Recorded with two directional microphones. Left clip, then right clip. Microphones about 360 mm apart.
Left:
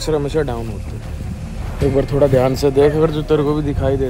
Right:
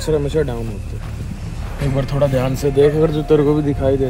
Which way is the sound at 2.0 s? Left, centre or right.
Left.